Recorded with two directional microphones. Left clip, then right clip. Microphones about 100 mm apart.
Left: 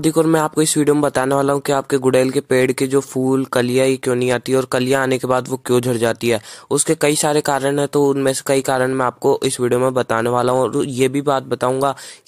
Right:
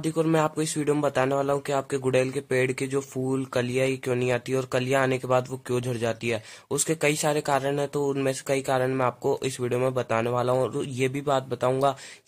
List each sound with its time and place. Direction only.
0.0 s speech: 75° left (ahead or behind)
0.6 s speech: 55° left (ahead or behind)
1.0 s speech: 70° left (ahead or behind)
6.7 s speech: 55° left (ahead or behind)
9.9 s speech: 65° left (ahead or behind)